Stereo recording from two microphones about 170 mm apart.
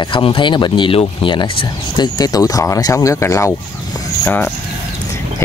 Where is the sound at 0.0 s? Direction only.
30° left (ahead or behind).